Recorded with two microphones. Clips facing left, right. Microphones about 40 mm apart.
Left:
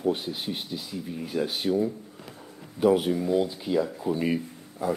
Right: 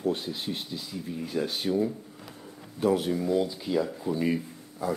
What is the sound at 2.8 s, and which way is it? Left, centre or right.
Speech, centre.